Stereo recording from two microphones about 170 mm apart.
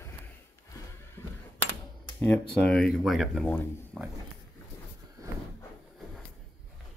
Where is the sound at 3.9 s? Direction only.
Centre (ahead or behind).